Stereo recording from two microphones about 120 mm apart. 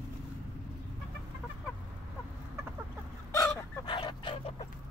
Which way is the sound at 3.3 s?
40° left (ahead or behind).